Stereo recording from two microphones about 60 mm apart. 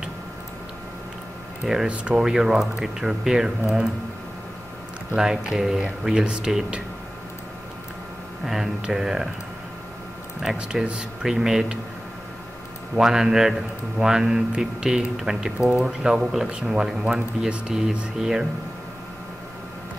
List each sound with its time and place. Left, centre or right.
1.6 s speech: centre
1.9 s speech: centre
2.2 s speech: centre
5.1 s speech: centre
8.5 s speech: centre
10.5 s speech: centre
12.9 s speech: centre